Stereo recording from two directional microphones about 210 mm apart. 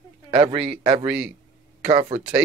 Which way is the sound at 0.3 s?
25° right (ahead or behind).